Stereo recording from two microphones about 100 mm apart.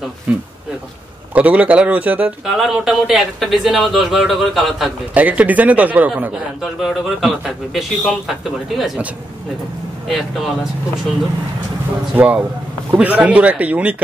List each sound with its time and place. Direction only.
0.3 s a man's voice: 15° right (ahead or behind)
2.4 s speech: centre (ahead or behind)
5.1 s a man's voice: 15° right (ahead or behind)
6.3 s speech: 5° right (ahead or behind)
10.0 s speech: centre (ahead or behind)
12.9 s a man's voice: 15° right (ahead or behind)